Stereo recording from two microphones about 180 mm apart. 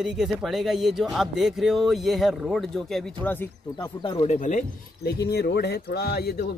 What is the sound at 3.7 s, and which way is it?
Speech, 20° left (ahead or behind).